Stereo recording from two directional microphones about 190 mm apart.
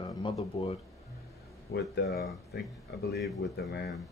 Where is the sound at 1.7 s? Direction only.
60° left (ahead or behind).